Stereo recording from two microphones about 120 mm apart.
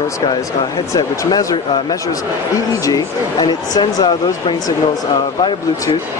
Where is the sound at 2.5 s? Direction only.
30° left (ahead or behind).